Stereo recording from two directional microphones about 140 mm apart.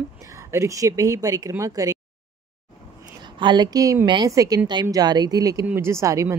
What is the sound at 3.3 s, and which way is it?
Speech, 30° right (ahead or behind).